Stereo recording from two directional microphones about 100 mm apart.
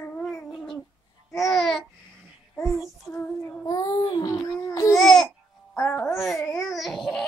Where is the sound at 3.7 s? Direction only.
40° left (ahead or behind).